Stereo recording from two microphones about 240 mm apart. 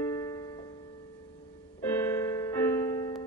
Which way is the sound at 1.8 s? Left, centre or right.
Centre.